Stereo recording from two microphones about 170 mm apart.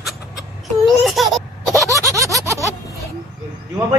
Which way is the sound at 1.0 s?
Centre (ahead or behind).